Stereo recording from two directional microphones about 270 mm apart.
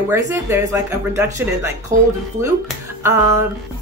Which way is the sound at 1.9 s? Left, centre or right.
Right.